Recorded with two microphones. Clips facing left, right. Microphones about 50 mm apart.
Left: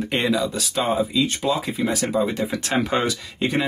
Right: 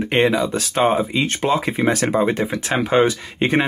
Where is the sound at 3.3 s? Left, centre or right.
Right.